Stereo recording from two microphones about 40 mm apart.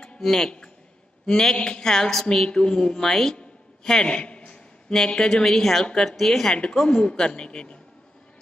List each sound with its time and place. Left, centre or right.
0.2 s a woman's voice: centre
3.8 s a sound: centre
4.9 s a woman's voice: centre